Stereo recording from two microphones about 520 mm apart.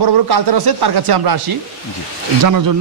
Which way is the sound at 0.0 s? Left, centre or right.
Right.